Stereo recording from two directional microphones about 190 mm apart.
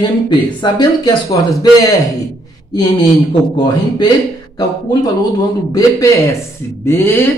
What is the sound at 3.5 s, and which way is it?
A man's voice, 20° left (ahead or behind).